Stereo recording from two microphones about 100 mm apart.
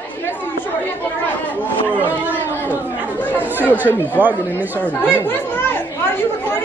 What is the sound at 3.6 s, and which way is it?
Speech, 20° right (ahead or behind).